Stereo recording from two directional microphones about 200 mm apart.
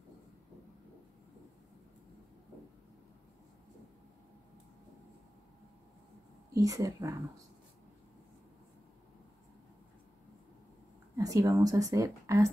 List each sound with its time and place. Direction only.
6.5 s speech: 15° right (ahead or behind)
11.1 s speech: 15° right (ahead or behind)